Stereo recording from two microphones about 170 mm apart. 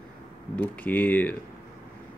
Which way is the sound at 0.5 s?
10° left (ahead or behind).